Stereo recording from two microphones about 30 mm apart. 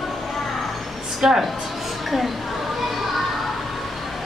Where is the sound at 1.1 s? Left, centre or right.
Centre.